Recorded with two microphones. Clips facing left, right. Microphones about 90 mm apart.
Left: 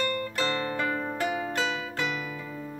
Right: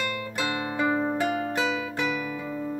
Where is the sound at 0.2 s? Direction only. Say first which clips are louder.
Even; 10° right (ahead or behind).